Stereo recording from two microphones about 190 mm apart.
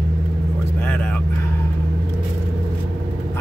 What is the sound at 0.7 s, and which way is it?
Vehicle, 10° left (ahead or behind).